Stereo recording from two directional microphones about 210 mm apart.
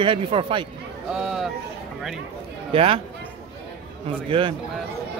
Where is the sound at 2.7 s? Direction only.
25° right (ahead or behind).